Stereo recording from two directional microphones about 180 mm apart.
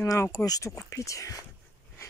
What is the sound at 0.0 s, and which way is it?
Speech, 15° left (ahead or behind).